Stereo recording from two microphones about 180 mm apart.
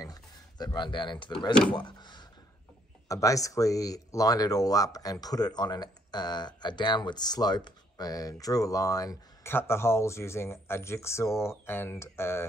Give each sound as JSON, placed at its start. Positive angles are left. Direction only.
{"t": 0.0, "sound": "speech", "side_deg": 20}